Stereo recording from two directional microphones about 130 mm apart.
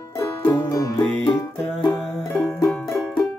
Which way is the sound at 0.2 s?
25° left (ahead or behind).